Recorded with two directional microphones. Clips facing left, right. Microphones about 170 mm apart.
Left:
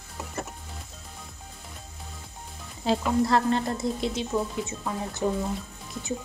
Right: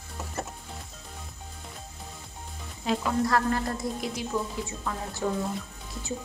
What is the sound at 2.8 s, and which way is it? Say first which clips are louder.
A woman's voice: left 3 dB; 30° left (ahead or behind).